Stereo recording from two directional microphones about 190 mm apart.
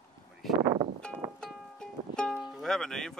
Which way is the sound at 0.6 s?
25° right (ahead or behind).